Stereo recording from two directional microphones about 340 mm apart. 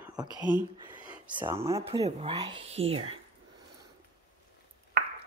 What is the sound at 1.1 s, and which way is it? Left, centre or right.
Speech, centre.